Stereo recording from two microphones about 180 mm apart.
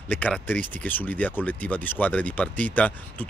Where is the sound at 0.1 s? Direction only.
10° left (ahead or behind).